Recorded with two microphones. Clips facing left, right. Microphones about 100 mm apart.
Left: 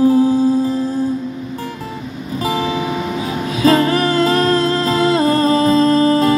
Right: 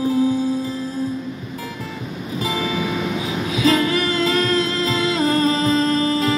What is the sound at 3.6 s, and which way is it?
Music, 40° left (ahead or behind).